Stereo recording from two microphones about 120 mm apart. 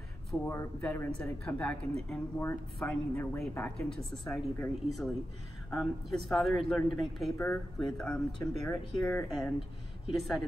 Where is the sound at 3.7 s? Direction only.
5° left (ahead or behind).